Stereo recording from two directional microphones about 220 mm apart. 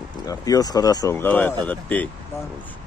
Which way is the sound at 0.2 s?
15° left (ahead or behind).